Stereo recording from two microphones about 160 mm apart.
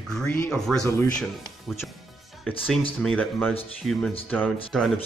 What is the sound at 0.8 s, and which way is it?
Speech, 20° left (ahead or behind).